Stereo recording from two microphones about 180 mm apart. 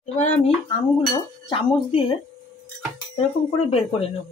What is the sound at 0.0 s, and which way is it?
Speech, 40° left (ahead or behind).